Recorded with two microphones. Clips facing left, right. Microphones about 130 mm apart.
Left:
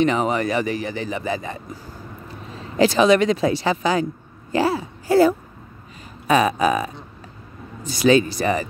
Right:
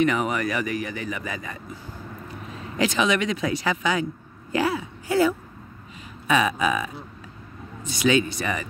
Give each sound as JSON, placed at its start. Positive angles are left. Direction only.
{"t": 0.0, "sound": "a man's voice", "side_deg": 30}